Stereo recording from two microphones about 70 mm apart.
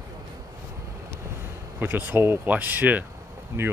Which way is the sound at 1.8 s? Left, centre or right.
Right.